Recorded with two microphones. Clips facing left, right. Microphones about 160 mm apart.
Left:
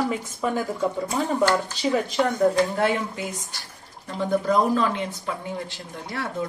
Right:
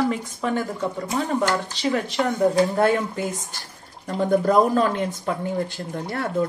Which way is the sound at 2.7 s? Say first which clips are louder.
Right 4 dB; 45° right (ahead or behind).